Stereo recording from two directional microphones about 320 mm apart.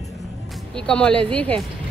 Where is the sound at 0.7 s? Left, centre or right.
Centre.